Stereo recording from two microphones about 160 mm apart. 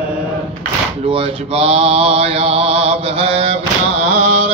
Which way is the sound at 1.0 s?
35° right (ahead or behind).